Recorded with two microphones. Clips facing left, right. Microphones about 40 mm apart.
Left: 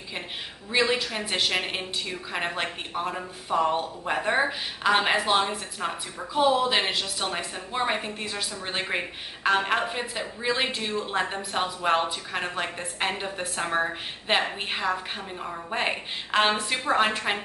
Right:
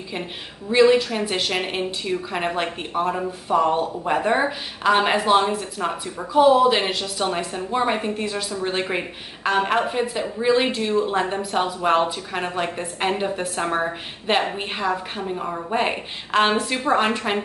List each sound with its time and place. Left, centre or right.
0.7 s speech: centre
7.2 s speech: centre
15.3 s a woman's voice: right
15.7 s speech: centre